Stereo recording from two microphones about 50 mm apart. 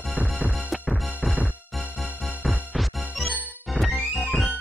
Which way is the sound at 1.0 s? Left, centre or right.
Centre.